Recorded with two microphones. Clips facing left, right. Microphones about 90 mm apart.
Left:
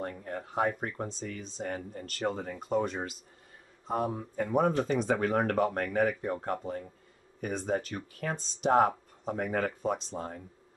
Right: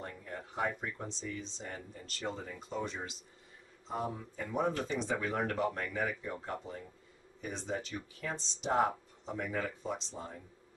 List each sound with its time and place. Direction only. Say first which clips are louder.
0.0 s speech: left 7 dB; 50° left (ahead or behind)